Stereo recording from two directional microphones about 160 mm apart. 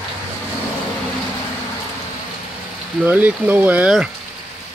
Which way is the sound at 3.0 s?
10° right (ahead or behind).